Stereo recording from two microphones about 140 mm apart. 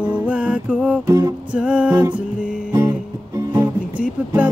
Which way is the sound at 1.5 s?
5° right (ahead or behind).